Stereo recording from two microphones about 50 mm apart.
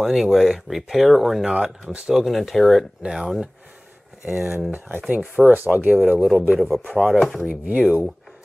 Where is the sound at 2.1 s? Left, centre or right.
Centre.